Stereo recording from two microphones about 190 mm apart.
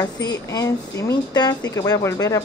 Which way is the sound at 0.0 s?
20° left (ahead or behind).